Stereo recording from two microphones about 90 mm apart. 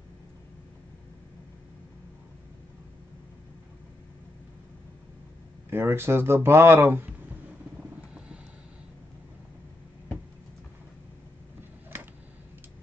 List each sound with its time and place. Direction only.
5.7 s speech: 25° right (ahead or behind)